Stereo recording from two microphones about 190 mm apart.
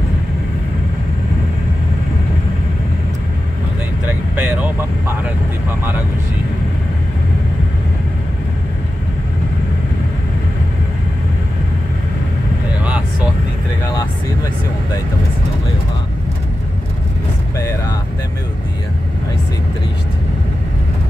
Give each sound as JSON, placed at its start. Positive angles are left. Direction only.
{"t": 4.4, "sound": "vehicle", "side_deg": -10}
{"t": 12.8, "sound": "vehicle", "side_deg": -5}
{"t": 17.6, "sound": "vehicle", "side_deg": 15}